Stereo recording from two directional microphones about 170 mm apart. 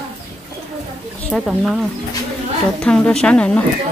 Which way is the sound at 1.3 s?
Centre (ahead or behind).